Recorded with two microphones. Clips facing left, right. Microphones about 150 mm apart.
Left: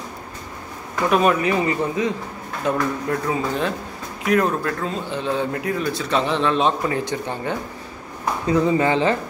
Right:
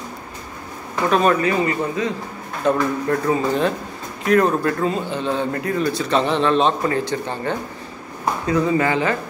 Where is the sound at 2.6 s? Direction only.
Centre (ahead or behind).